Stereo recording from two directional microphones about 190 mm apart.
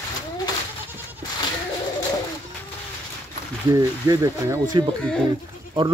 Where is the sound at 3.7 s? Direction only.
20° right (ahead or behind).